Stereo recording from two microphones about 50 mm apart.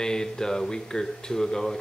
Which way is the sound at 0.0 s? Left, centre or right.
Centre.